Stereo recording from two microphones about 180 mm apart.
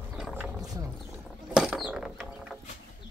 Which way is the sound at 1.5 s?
5° right (ahead or behind).